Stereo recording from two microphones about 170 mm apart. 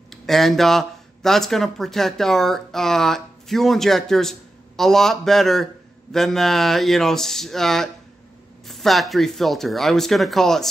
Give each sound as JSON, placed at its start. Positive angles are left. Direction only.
{"t": 0.1, "sound": "speech", "side_deg": 0}